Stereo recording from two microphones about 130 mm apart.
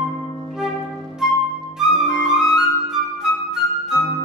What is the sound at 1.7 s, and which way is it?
Music, centre (ahead or behind).